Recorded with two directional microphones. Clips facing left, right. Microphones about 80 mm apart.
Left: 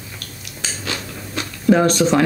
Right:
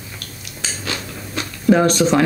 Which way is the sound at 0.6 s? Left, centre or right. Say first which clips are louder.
Even; right.